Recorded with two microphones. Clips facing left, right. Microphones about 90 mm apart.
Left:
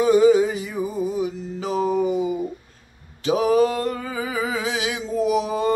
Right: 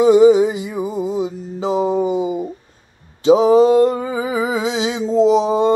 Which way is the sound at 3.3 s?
25° right (ahead or behind).